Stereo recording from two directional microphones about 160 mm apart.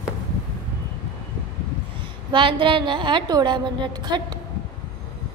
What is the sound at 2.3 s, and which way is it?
A woman's voice, 30° right (ahead or behind).